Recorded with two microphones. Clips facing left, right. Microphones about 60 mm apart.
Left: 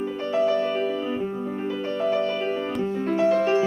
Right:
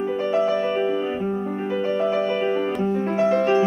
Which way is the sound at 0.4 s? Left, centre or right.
Right.